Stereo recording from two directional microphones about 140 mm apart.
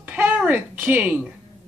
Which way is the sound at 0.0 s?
10° right (ahead or behind).